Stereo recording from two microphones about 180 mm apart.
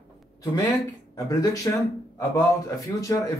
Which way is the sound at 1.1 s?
20° left (ahead or behind).